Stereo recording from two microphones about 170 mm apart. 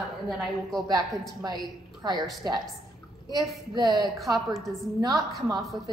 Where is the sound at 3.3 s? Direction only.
25° right (ahead or behind).